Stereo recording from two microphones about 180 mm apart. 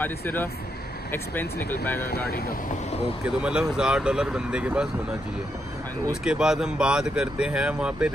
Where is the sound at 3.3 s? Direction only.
5° right (ahead or behind).